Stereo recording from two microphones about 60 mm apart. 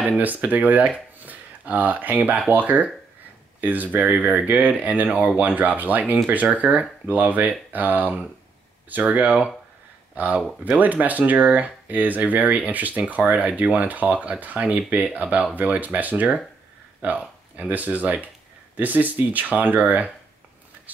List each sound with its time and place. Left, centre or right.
0.2 s speech: right